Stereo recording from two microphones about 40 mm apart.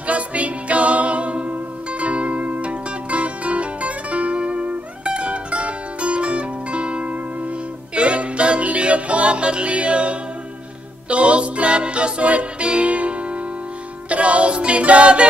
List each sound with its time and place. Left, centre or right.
0.0 s music: right